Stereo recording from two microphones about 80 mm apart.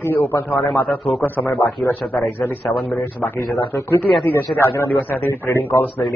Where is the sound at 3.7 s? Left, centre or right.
Left.